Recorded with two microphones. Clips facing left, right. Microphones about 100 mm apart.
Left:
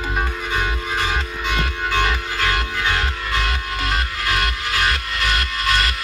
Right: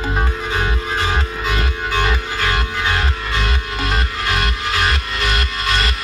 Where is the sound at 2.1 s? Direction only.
25° right (ahead or behind).